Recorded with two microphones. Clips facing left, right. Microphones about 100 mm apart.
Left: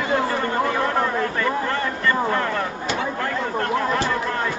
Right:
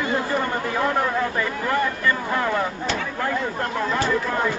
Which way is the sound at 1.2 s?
15° right (ahead or behind).